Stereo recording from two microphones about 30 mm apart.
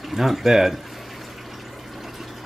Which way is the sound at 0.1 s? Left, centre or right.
Centre.